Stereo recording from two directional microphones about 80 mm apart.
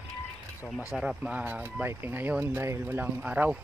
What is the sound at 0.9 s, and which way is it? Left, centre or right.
Speech, centre.